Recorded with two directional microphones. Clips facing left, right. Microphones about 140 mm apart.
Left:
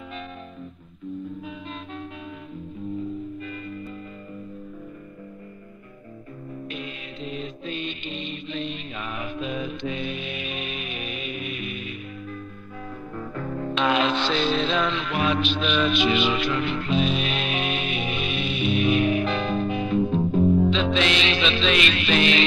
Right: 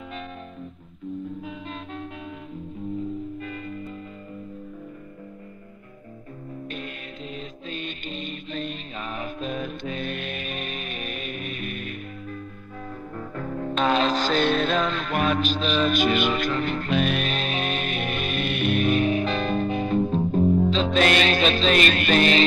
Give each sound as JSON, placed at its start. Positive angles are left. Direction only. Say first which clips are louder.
{"t": 6.7, "sound": "music", "louder": "even", "side_deg": -45}
{"t": 13.7, "sound": "mantra", "louder": "right 1 dB", "side_deg": -40}
{"t": 20.7, "sound": "music", "louder": "right 2 dB", "side_deg": -40}